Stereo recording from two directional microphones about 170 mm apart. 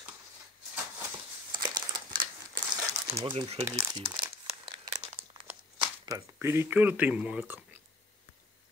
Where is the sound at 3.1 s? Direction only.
30° right (ahead or behind).